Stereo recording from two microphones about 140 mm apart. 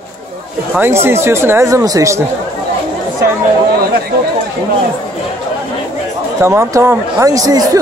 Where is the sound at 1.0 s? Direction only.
20° right (ahead or behind).